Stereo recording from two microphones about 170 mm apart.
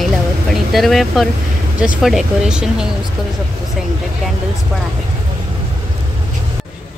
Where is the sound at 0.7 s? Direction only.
Centre (ahead or behind).